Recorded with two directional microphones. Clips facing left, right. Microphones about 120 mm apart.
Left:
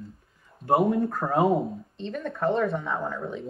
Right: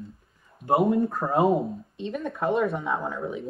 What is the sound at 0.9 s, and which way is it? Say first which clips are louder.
Speech: right 1 dB; 25° right (ahead or behind).